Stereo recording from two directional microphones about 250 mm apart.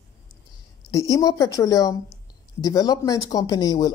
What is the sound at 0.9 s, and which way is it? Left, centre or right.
Speech, centre.